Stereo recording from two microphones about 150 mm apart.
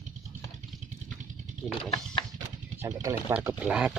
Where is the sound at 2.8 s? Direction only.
20° right (ahead or behind).